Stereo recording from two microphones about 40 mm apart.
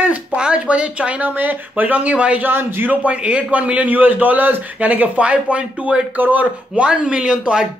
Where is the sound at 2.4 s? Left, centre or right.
Right.